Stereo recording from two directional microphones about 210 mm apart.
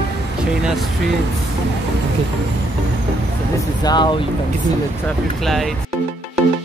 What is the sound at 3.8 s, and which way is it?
Speech, 20° left (ahead or behind).